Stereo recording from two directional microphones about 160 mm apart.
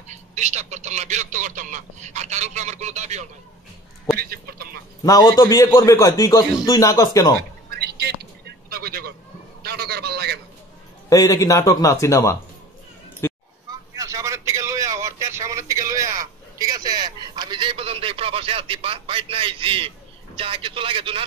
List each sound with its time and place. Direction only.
0.1 s speech: 45° right (ahead or behind)
4.2 s speech: 70° right (ahead or behind)
5.0 s a man's voice: 20° left (ahead or behind)
7.7 s a sound: 90° right; by 9.1 s 70° right (ahead or behind)
9.6 s a man's voice: 80° right
11.1 s a man's voice: 25° left (ahead or behind)
13.2 s a sound: 15° left (ahead or behind)
13.7 s vehicle: 20° right (ahead or behind)
20.3 s a man's voice: 35° right (ahead or behind)